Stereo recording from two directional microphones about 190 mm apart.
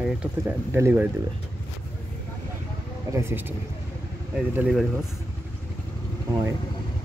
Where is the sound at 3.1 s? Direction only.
15° right (ahead or behind).